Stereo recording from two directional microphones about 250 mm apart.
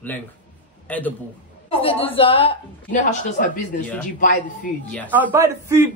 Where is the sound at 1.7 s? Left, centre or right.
Left.